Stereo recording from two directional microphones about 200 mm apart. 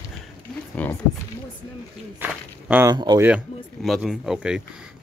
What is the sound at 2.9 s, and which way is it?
Speech, 20° right (ahead or behind).